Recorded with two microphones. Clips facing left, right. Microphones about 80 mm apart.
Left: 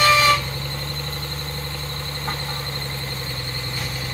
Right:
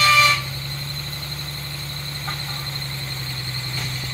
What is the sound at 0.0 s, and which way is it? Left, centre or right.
Vehicle, left.